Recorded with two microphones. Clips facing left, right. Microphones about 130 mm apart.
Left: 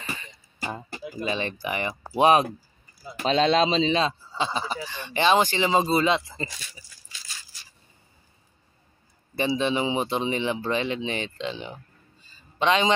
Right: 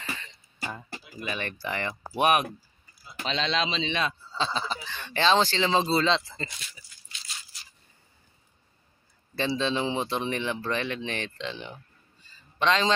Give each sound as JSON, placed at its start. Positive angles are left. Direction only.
{"t": 0.1, "sound": "music", "side_deg": 10}
{"t": 1.2, "sound": "speech", "side_deg": 20}
{"t": 3.3, "sound": "a man's voice", "side_deg": 45}
{"t": 4.3, "sound": "speech", "side_deg": 15}
{"t": 9.6, "sound": "a man's voice", "side_deg": 15}